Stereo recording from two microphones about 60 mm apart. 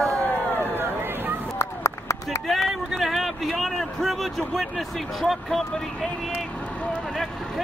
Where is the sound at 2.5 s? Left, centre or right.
Centre.